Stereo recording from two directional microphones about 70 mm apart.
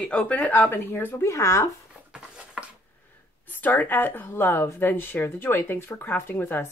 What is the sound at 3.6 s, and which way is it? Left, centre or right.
Speech, left.